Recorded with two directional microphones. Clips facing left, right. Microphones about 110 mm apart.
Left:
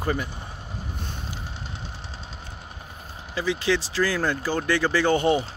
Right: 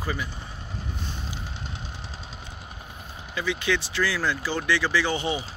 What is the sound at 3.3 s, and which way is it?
Speech, 35° left (ahead or behind).